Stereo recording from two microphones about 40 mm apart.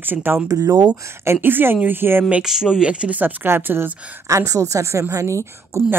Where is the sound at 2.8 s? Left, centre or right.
Right.